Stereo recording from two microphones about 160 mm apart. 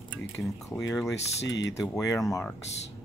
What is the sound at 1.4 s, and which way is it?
Speech, 90° left.